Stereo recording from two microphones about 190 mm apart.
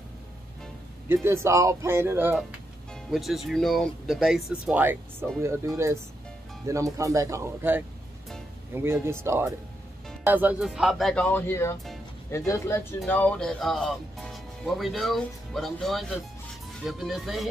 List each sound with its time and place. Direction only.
1.0 s a man's voice: 15° right (ahead or behind)
2.9 s a man's voice: centre (ahead or behind)